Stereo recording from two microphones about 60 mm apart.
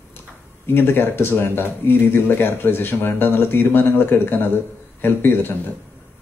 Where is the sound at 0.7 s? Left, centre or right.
Left.